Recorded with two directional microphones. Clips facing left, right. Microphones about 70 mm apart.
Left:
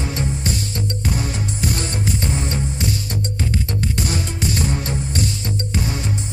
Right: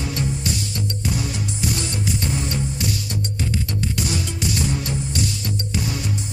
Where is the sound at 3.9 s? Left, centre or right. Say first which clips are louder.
Left 2 dB; left.